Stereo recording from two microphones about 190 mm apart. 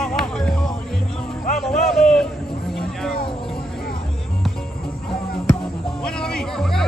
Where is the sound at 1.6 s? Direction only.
Centre (ahead or behind).